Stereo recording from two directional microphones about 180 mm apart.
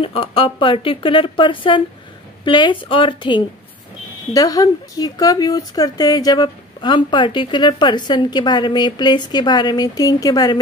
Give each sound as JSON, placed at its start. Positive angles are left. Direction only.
{"t": 0.0, "sound": "speech", "side_deg": 30}